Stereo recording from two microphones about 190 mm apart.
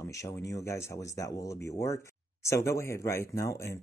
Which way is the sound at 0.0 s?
15° left (ahead or behind).